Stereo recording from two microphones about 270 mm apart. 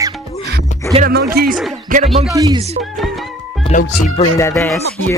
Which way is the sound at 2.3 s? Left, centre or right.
Centre.